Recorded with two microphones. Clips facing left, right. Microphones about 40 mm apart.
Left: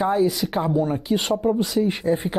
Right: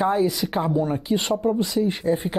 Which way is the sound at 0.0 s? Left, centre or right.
Centre.